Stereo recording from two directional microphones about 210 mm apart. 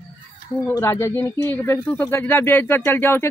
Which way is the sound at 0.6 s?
10° left (ahead or behind).